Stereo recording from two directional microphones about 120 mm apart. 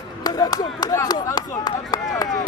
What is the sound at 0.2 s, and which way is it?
Speech, 30° left (ahead or behind).